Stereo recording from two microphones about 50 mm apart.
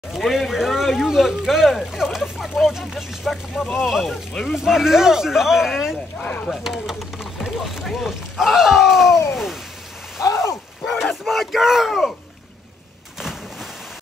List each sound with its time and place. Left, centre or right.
0.1 s speech: centre
6.2 s speech: left
6.5 s speech: centre
10.2 s a sound: left
10.9 s speech: centre
13.2 s a sound: centre